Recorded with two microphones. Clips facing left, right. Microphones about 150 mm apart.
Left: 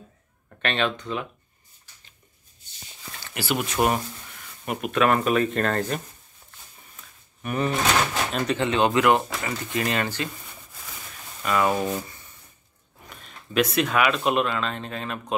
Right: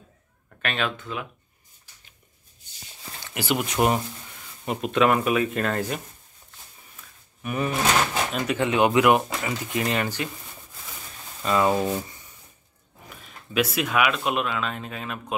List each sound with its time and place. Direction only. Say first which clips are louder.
0.6 s speech: left 3 dB; 5° right (ahead or behind)
3.3 s speech: right 1 dB; 20° right (ahead or behind)
7.4 s speech: even; 10° right (ahead or behind)
11.4 s speech: right 1 dB; 25° right (ahead or behind)
13.5 s speech: left 2 dB; 5° right (ahead or behind)